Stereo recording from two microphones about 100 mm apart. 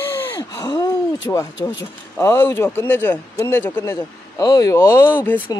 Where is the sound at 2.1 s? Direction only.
20° left (ahead or behind).